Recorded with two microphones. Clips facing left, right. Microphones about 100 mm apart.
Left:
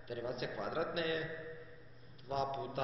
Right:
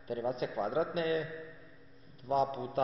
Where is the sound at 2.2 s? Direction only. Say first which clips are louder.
Right 6 dB; 30° right (ahead or behind).